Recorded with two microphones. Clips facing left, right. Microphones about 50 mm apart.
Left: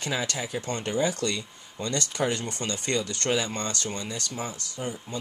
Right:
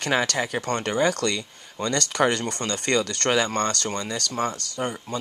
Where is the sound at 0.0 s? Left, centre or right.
Right.